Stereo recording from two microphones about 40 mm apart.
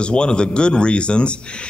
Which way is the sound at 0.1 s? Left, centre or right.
Left.